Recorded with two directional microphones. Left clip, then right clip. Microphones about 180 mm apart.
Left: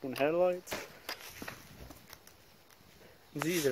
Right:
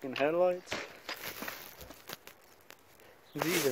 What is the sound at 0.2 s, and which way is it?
Speech, 15° left (ahead or behind).